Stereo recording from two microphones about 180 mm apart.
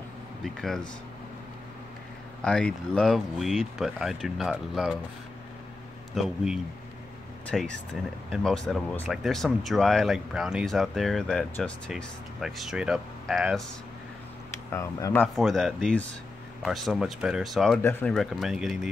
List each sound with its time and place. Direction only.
0.4 s speech: centre (ahead or behind)
2.4 s speech: 5° left (ahead or behind)
6.1 s speech: 5° right (ahead or behind)
14.7 s speech: 15° left (ahead or behind)
15.3 s speech: centre (ahead or behind)